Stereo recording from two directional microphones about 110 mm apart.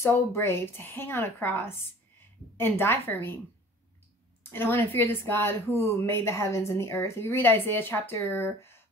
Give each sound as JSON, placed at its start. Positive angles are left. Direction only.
{"t": 0.0, "sound": "speech", "side_deg": 25}
{"t": 4.4, "sound": "speech", "side_deg": 20}